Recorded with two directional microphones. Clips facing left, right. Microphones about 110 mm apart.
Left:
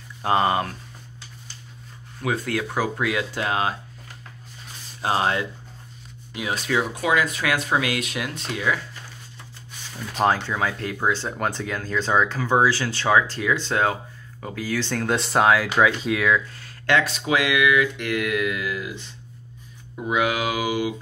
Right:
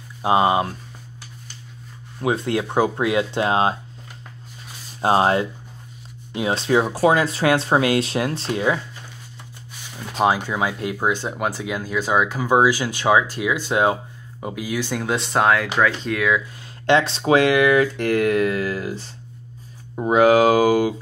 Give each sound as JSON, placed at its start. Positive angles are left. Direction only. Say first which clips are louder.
{"t": 0.2, "sound": "speech", "louder": "right 3 dB", "side_deg": -15}
{"t": 2.1, "sound": "speech", "louder": "right 4 dB", "side_deg": -25}
{"t": 5.0, "sound": "speech", "louder": "right 5 dB", "side_deg": -30}
{"t": 10.1, "sound": "speech", "louder": "right 2 dB", "side_deg": -10}
{"t": 16.5, "sound": "speech", "louder": "right 4 dB", "side_deg": -20}